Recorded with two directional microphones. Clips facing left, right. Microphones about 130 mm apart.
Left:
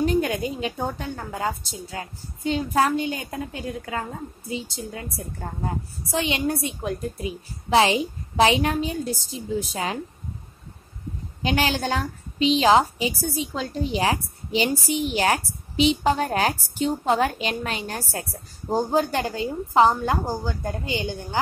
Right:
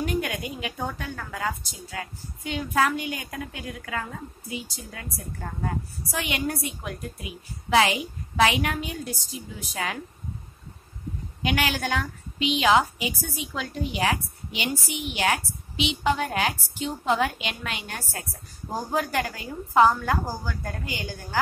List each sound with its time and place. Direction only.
0.0 s a woman's voice: 30° left (ahead or behind)
11.4 s a woman's voice: 30° left (ahead or behind)